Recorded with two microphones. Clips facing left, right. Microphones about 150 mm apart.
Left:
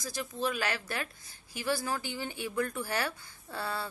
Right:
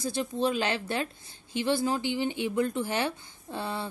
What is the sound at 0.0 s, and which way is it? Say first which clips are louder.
A woman's voice: right 6 dB; 30° right (ahead or behind).